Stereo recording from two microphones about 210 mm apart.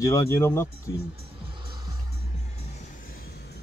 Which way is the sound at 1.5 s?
20° right (ahead or behind).